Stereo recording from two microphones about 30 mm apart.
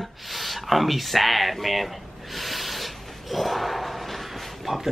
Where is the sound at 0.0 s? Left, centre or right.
Centre.